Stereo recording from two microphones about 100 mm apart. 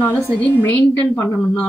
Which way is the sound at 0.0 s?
20° left (ahead or behind).